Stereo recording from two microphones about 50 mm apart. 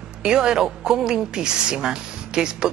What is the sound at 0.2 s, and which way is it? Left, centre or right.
Speech, centre.